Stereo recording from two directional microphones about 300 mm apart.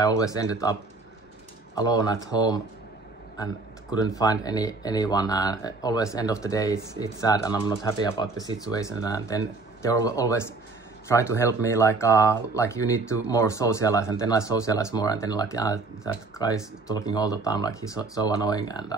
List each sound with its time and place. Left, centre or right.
0.0 s speech: centre
1.8 s speech: centre
3.9 s speech: centre